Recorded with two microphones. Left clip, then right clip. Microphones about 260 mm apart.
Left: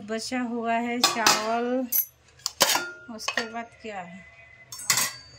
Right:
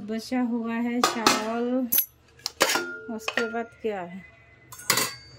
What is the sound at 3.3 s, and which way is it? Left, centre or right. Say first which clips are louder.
Female singing: right 3 dB; centre.